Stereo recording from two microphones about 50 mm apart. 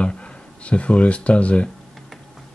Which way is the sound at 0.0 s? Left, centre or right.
Left.